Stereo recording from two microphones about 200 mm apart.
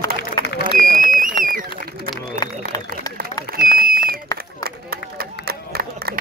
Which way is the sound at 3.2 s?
45° right (ahead or behind).